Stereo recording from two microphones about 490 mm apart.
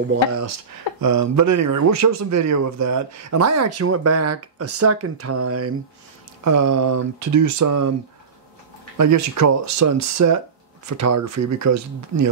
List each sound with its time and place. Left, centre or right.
1.0 s speech: right
8.9 s speech: right